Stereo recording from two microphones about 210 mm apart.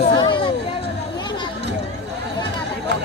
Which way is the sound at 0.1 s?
25° left (ahead or behind).